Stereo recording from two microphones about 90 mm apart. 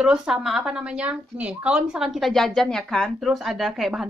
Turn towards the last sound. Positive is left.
turn(degrees=0)  # may be behind; listen again after turning